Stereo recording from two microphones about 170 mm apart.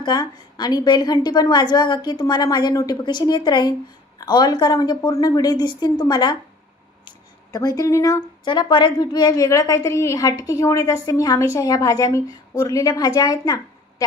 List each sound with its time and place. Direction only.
0.0 s a woman's voice: 25° left (ahead or behind)